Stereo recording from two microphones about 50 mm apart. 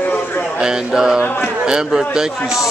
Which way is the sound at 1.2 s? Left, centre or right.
Left.